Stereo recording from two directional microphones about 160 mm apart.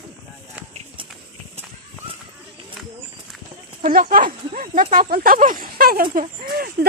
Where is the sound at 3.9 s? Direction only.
60° right (ahead or behind).